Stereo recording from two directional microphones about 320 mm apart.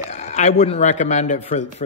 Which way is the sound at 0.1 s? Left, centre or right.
Left.